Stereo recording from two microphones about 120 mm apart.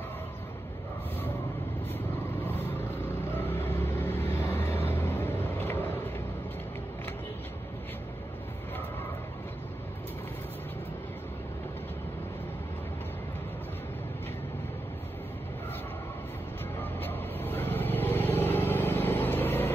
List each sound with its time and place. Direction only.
3.3 s vehicle: 20° left (ahead or behind)
17.0 s vehicle: 15° left (ahead or behind)